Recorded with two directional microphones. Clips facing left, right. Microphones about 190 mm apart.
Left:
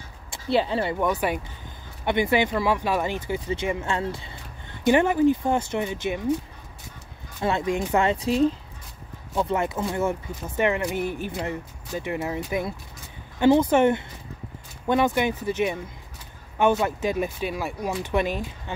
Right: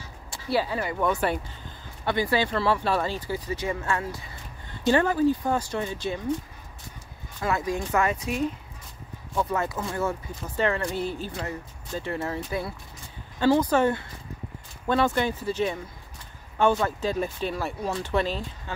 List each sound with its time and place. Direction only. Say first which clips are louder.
0.5 s speech: left 3 dB; 25° left (ahead or behind)
0.9 s speech: left 1 dB; 15° left (ahead or behind)
7.4 s speech: left 3 dB; 25° left (ahead or behind)
16.8 s speech: left 2 dB; 15° left (ahead or behind)